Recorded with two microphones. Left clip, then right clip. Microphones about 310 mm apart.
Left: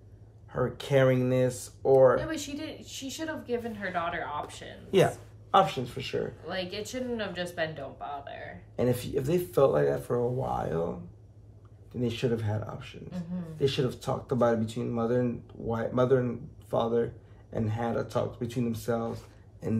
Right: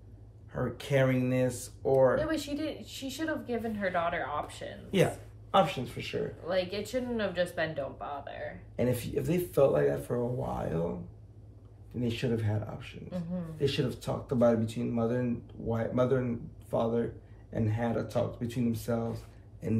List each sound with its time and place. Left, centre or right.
0.5 s speech: centre
2.2 s a woman's voice: centre
4.9 s speech: centre
6.4 s a woman's voice: centre
8.7 s speech: centre
12.0 s speech: centre